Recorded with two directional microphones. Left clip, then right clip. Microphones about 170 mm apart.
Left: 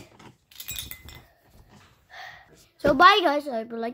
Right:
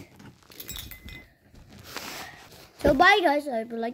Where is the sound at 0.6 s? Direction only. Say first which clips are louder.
Left 3 dB; 25° right (ahead or behind).